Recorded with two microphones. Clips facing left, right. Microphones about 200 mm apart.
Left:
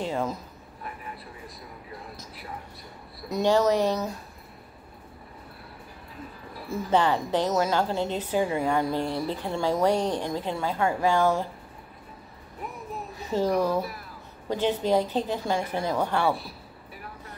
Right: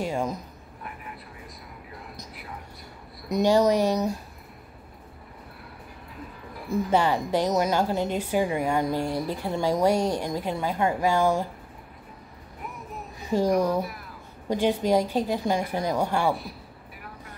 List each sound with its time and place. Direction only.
0.0 s speech: 15° right (ahead or behind)
3.3 s a woman's voice: 15° right (ahead or behind)
6.7 s a woman's voice: 10° right (ahead or behind)
13.3 s a woman's voice: 15° right (ahead or behind)